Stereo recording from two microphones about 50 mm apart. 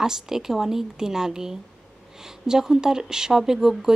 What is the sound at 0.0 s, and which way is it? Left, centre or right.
A woman's voice, centre.